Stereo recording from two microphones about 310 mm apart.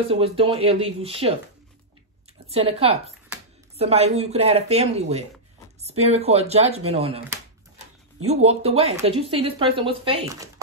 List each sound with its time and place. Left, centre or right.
0.1 s speech: centre
2.4 s speech: centre
8.3 s speech: centre